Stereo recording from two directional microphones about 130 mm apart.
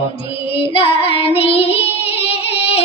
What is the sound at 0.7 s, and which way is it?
Child singing, 45° left (ahead or behind).